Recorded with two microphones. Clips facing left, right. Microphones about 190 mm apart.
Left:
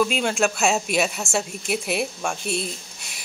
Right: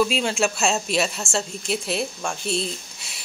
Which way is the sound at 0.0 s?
Centre (ahead or behind).